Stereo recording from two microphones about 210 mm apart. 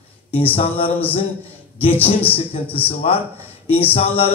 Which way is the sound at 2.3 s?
25° left (ahead or behind).